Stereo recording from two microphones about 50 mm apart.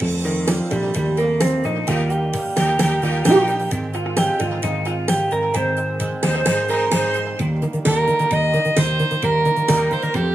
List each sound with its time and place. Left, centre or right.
2.6 s music: left
6.2 s music: left
8.0 s music: centre
8.3 s music: right